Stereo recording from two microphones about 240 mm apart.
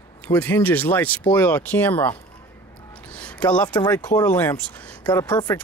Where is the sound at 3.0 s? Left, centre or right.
Centre.